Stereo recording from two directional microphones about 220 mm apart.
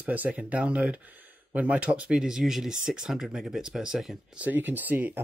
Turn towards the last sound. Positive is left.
turn(degrees=-10)  # may be behind; listen again after turning